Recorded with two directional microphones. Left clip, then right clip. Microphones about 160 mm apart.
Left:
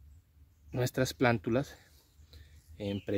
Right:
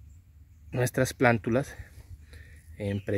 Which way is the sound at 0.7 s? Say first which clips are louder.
Right 5 dB; 5° right (ahead or behind).